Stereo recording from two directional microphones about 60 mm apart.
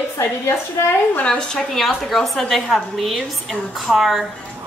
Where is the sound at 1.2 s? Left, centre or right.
Centre.